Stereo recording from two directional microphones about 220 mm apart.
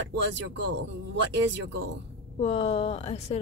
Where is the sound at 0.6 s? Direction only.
55° right (ahead or behind).